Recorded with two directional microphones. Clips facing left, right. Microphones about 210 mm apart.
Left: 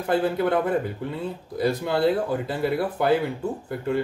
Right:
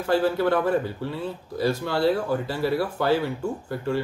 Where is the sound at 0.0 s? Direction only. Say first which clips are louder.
Right 1 dB; 20° left (ahead or behind).